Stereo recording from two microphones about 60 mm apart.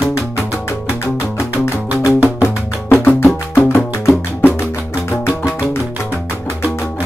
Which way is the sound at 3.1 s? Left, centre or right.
Left.